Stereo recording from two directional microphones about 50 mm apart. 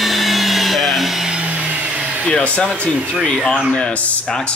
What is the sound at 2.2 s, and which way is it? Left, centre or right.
Speech, left.